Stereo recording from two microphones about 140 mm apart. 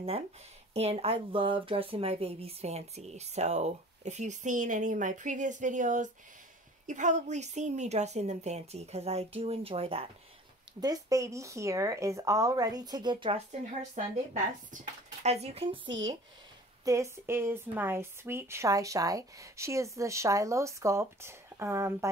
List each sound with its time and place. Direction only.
0.7 s speech: 45° right (ahead or behind)
10.8 s a woman's voice: 25° right (ahead or behind)
13.5 s speech: 55° right (ahead or behind)
15.2 s speech: 50° right (ahead or behind); by 16.2 s 35° right (ahead or behind)
16.8 s a woman's voice: 20° right (ahead or behind)